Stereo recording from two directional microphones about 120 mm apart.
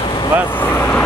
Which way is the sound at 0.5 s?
15° left (ahead or behind).